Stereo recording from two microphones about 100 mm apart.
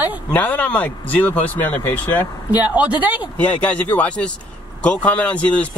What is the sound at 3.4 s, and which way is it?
Speech, 15° left (ahead or behind).